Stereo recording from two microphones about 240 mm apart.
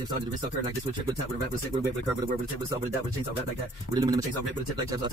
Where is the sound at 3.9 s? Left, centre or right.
Centre.